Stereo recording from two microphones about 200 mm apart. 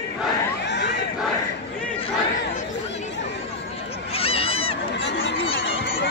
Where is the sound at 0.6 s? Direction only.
60° left (ahead or behind).